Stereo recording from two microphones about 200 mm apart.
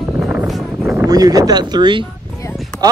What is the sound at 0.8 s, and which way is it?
Speech, 15° right (ahead or behind).